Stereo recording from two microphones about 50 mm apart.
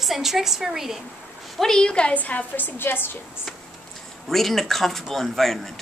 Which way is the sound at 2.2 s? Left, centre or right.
Left.